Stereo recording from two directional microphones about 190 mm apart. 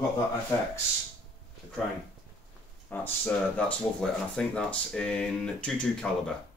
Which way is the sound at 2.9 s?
10° left (ahead or behind).